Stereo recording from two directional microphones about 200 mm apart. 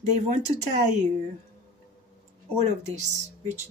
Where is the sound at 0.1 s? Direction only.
35° right (ahead or behind).